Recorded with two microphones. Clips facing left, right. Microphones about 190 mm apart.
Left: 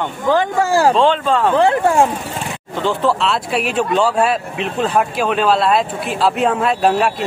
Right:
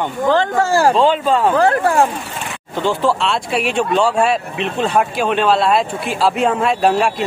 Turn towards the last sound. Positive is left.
turn(degrees=0)  # may be behind; listen again after turning